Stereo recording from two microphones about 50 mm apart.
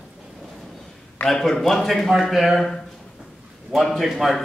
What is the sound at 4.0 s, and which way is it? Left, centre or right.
Speech, centre.